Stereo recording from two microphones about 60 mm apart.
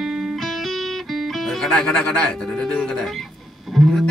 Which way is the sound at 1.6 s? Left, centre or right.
Centre.